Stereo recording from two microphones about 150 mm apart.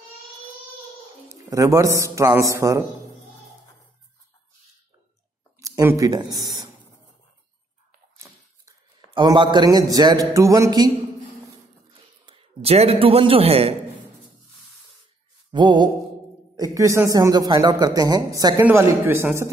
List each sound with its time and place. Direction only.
1.3 s a man's voice: 20° right (ahead or behind)
5.6 s speech: 20° right (ahead or behind)
9.1 s a man's voice: 30° right (ahead or behind)
12.3 s a man's voice: 40° right (ahead or behind)
15.5 s a man's voice: 30° right (ahead or behind)
18.6 s speech: 15° right (ahead or behind)